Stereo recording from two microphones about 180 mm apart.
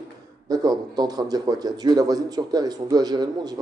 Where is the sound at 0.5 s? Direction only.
20° right (ahead or behind).